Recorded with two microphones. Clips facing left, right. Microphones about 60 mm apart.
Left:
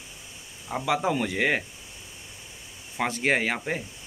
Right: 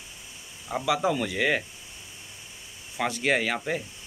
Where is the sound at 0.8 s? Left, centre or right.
Left.